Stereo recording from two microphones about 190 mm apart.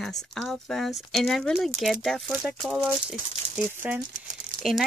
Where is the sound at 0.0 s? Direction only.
Centre (ahead or behind).